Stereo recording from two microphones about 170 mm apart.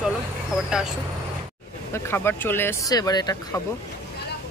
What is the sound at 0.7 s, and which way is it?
Speech, 5° right (ahead or behind).